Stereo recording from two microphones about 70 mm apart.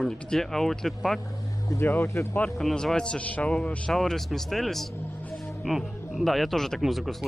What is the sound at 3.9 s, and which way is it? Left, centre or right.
Speech, centre.